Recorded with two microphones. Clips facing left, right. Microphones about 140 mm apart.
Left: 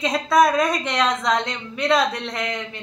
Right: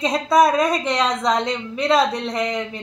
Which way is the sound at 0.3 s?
30° right (ahead or behind).